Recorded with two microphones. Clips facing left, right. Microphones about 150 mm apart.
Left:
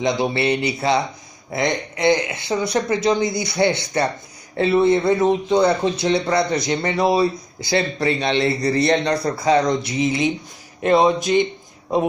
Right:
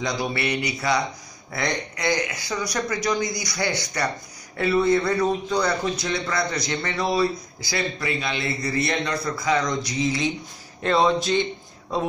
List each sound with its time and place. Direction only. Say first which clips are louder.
0.0 s speech: left 6 dB; 25° left (ahead or behind)